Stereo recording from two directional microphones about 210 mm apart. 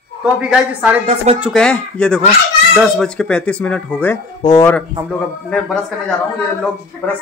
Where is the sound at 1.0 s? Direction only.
30° right (ahead or behind).